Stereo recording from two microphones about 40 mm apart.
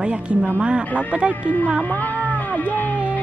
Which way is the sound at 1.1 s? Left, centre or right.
Right.